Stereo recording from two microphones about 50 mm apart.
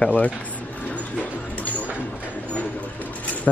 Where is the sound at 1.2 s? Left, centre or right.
Left.